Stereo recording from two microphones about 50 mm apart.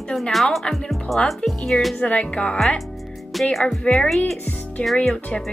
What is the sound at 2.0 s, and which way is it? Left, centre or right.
Speech, left.